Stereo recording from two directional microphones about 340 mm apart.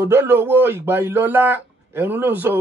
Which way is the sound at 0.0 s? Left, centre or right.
Centre.